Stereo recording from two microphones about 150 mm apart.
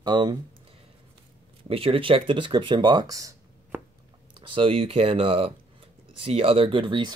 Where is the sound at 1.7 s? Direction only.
40° right (ahead or behind); by 3.8 s 20° right (ahead or behind).